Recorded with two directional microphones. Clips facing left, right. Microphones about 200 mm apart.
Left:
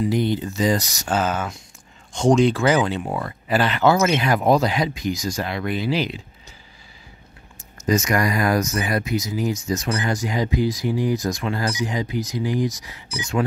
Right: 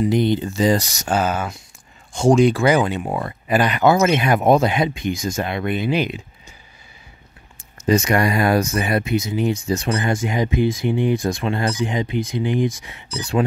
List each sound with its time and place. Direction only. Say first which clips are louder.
0.0 s speech: right 3 dB; 20° right (ahead or behind)
1.1 s speech: right 2 dB; 10° right (ahead or behind)
7.7 s speech: right 3 dB; 30° right (ahead or behind)